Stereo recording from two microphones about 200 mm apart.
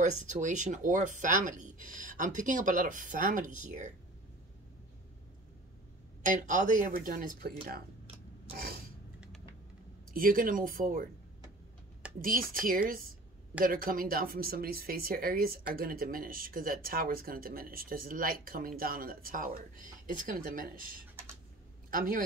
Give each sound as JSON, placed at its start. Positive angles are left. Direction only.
{"t": 0.0, "sound": "speech", "side_deg": -35}
{"t": 6.2, "sound": "speech", "side_deg": -40}
{"t": 8.5, "sound": "a sound", "side_deg": -50}
{"t": 10.1, "sound": "speech", "side_deg": -45}
{"t": 12.2, "sound": "speech", "side_deg": -45}